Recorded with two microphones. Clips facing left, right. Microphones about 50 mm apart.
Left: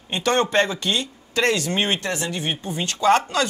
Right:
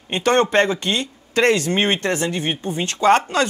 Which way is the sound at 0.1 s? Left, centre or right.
Right.